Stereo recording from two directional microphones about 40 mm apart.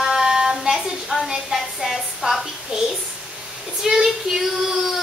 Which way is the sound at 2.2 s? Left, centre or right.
Centre.